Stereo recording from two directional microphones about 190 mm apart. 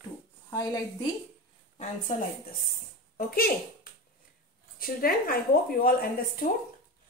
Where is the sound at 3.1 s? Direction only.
50° left (ahead or behind).